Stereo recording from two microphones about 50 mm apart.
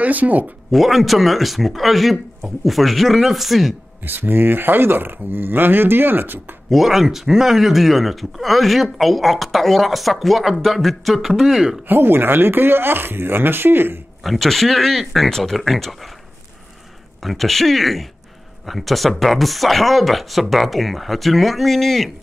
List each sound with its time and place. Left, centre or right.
0.0 s speech: right
0.7 s speech: centre
4.0 s speech: right
6.7 s speech: centre
11.9 s speech: right
14.2 s speech: centre
17.2 s speech: centre